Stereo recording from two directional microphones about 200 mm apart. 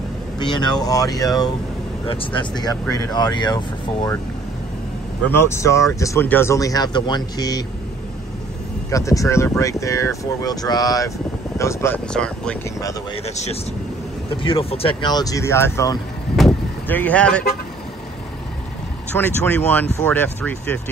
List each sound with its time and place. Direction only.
0.4 s speech: 25° left (ahead or behind)
5.2 s speech: 10° left (ahead or behind)
8.9 s speech: 15° left (ahead or behind)
13.1 s speech: 35° left (ahead or behind); by 16.0 s 15° left (ahead or behind)
16.3 s vehicle: 5° left (ahead or behind)
19.1 s speech: 10° left (ahead or behind)